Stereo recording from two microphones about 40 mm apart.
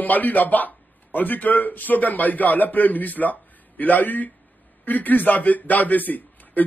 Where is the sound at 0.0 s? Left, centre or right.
Left.